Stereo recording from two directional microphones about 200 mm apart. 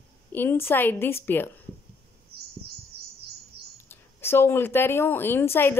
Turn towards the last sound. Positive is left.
turn(degrees=10)  # may be behind; listen again after turning